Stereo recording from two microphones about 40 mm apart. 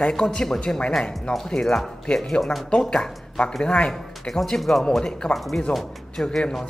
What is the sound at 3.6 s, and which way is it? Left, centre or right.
Speech, left.